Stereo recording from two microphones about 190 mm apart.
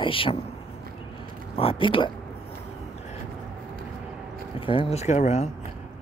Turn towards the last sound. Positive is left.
turn(degrees=35)  # may be behind; listen again after turning